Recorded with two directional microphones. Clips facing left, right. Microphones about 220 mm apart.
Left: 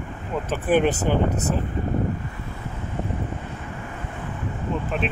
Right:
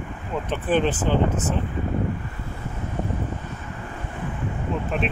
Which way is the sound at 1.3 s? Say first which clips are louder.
Left 1 dB; 40° left (ahead or behind).